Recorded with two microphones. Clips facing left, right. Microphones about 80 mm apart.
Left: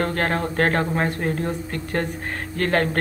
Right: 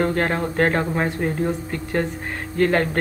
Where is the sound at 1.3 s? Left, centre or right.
Centre.